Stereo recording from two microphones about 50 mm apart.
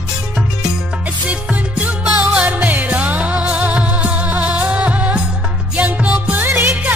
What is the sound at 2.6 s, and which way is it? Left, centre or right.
Music, right.